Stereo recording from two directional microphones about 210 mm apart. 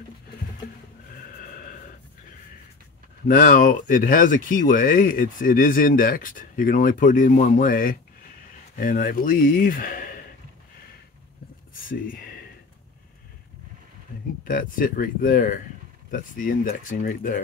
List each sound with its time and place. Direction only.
1.4 s a sound: 40° left (ahead or behind)
3.3 s speech: 40° left (ahead or behind)
14.4 s speech: 40° left (ahead or behind)